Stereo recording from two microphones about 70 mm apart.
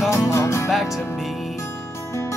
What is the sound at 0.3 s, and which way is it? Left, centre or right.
Music, left.